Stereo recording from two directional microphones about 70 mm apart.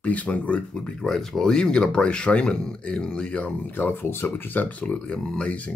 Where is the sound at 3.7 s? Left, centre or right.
Left.